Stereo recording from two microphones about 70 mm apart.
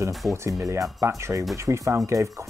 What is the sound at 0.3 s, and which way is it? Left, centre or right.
Speech, right.